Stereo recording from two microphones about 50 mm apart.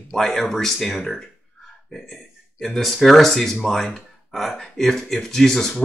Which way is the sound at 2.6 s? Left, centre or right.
Centre.